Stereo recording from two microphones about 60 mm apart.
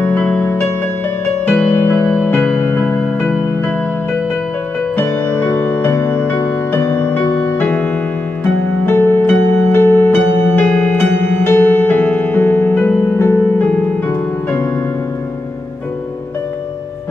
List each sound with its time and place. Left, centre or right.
0.0 s music: left
1.7 s music: left
2.8 s music: left
4.9 s music: left
13.7 s music: left